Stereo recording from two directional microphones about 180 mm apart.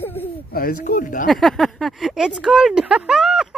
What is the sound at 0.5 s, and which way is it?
Speech, 55° left (ahead or behind).